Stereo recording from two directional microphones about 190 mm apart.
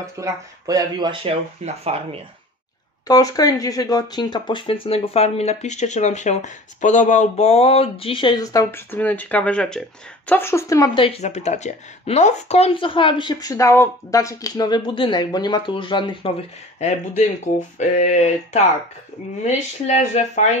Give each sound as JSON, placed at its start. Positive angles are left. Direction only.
{"t": 0.0, "sound": "speech", "side_deg": -15}
{"t": 3.1, "sound": "speech", "side_deg": 20}
{"t": 11.1, "sound": "speech", "side_deg": 35}